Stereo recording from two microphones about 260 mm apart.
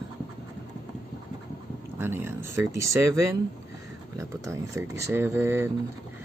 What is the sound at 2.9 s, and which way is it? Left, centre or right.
Speech, right.